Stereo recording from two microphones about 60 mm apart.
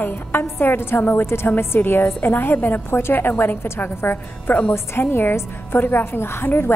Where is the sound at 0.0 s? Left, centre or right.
Left.